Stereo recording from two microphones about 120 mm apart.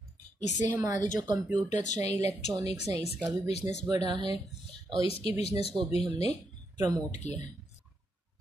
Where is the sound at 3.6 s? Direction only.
30° right (ahead or behind).